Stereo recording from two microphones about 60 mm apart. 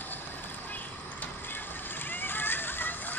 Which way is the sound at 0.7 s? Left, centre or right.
Left.